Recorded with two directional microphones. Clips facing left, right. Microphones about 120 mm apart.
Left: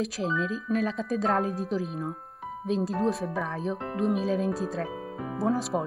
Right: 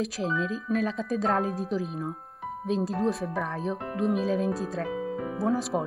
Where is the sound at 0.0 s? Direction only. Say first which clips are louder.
Even; centre (ahead or behind).